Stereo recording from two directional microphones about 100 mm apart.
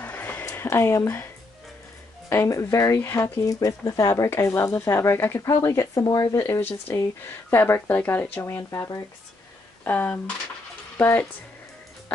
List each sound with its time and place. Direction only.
0.0 s a sound: 15° left (ahead or behind)
2.2 s speech: 30° left (ahead or behind)
6.0 s speech: 45° left (ahead or behind)
6.3 s speech: 25° left (ahead or behind)
8.4 s speech: 30° left (ahead or behind)
9.8 s speech: 15° left (ahead or behind)